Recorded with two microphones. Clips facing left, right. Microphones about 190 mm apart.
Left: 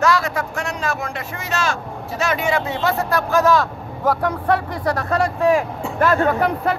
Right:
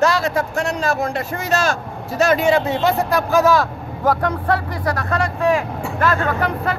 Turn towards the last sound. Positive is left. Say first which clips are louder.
# left 3 dB
turn(degrees=15)  # may be behind; listen again after turning